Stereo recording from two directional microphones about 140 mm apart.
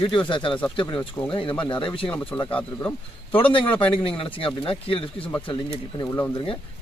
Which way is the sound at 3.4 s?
40° left (ahead or behind).